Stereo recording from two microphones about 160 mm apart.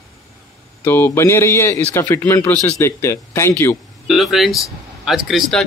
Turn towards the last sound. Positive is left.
turn(degrees=0)  # may be behind; listen again after turning